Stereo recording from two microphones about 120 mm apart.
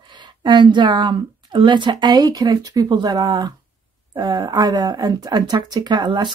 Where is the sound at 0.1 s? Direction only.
40° right (ahead or behind).